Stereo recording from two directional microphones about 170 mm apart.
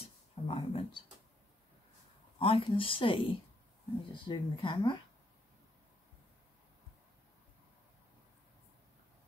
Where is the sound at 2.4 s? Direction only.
30° left (ahead or behind).